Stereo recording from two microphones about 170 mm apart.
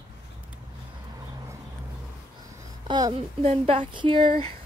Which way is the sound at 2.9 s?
25° right (ahead or behind).